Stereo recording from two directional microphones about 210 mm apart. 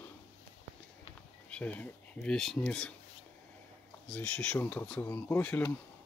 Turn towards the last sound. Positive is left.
turn(degrees=10)  # may be behind; listen again after turning